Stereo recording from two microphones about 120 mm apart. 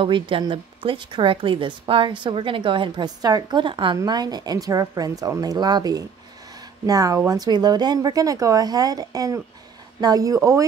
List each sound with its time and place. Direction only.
0.0 s a woman's voice: 45° right (ahead or behind); by 10.7 s 25° right (ahead or behind)